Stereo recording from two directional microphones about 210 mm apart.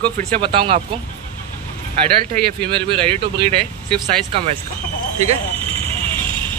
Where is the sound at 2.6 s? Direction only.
25° right (ahead or behind).